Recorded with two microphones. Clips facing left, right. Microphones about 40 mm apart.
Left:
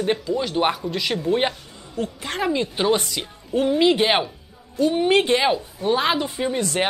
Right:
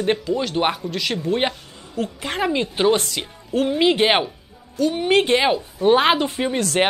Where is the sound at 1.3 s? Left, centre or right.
Centre.